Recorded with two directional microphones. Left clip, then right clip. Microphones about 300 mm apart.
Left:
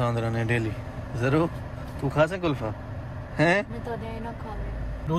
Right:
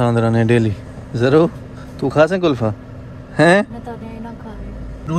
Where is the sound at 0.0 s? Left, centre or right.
Right.